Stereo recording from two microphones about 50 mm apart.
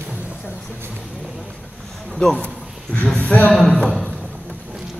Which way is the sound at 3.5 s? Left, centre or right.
Centre.